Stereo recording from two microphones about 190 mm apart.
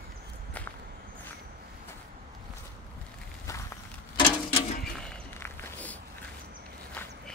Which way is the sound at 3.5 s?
15° left (ahead or behind).